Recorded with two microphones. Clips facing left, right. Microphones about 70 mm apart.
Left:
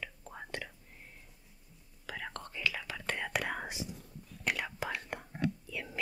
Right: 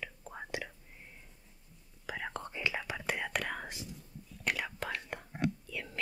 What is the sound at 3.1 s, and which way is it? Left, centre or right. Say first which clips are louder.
Whispering: left 1 dB; centre.